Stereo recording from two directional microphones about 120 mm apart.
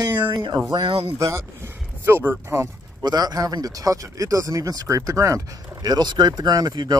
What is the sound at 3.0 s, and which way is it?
Speech, 35° right (ahead or behind).